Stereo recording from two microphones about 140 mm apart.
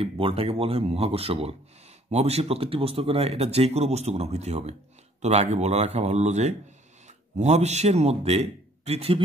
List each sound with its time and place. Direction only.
0.0 s speech: 45° right (ahead or behind)